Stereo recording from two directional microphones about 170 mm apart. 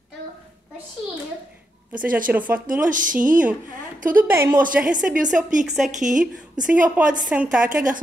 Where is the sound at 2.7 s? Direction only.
50° right (ahead or behind).